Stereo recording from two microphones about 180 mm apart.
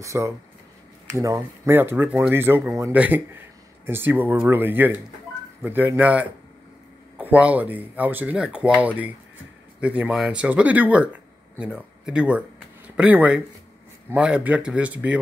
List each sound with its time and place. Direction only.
0.0 s speech: 15° right (ahead or behind)